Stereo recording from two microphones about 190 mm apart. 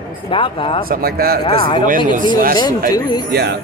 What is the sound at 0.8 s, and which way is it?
Speech, 50° right (ahead or behind).